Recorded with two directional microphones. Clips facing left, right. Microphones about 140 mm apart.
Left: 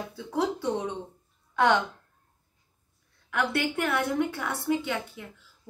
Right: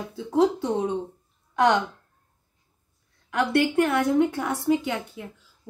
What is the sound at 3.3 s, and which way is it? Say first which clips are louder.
A woman's voice: right 6 dB; 20° right (ahead or behind).